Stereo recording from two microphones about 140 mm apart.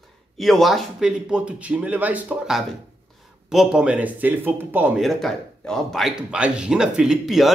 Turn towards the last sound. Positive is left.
turn(degrees=0)  # may be behind; listen again after turning